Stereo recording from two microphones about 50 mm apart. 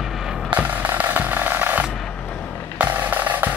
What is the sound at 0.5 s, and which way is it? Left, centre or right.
Music, right.